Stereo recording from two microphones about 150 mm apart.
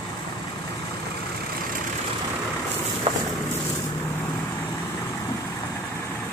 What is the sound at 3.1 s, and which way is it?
Boat, 40° right (ahead or behind).